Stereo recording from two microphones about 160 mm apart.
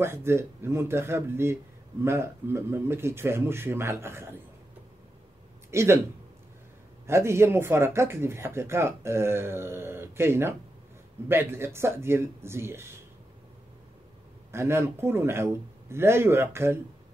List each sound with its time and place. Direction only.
0.0 s speech: 15° right (ahead or behind)
5.7 s speech: 15° right (ahead or behind)
7.1 s speech: 15° right (ahead or behind)
14.5 s speech: 15° right (ahead or behind)